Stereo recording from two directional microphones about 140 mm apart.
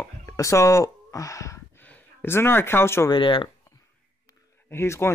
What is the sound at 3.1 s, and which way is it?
Speech, 35° left (ahead or behind).